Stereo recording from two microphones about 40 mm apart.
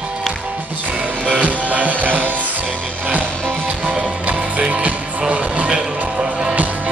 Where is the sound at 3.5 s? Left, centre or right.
Right.